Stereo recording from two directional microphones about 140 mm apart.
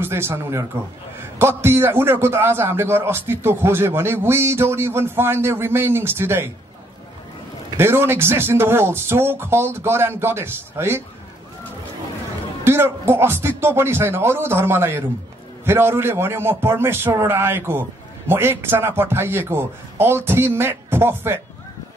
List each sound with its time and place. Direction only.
0.0 s a man's voice: 15° right (ahead or behind)
7.7 s a man's voice: 15° right (ahead or behind)
12.6 s a man's voice: 15° right (ahead or behind)